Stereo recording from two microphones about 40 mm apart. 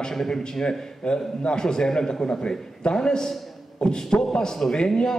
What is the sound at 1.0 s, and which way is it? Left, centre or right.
A man's voice, left.